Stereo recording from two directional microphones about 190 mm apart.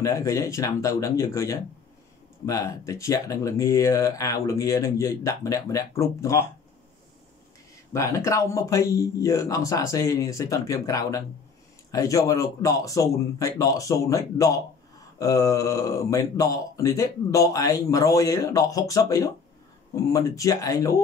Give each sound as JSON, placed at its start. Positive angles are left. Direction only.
{"t": 0.0, "sound": "speech", "side_deg": 15}
{"t": 7.9, "sound": "speech", "side_deg": 15}